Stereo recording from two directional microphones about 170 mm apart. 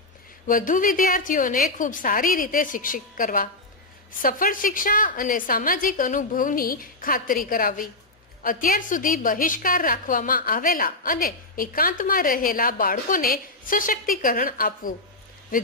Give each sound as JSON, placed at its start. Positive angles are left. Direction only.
{"t": 0.5, "sound": "a woman's voice", "side_deg": 50}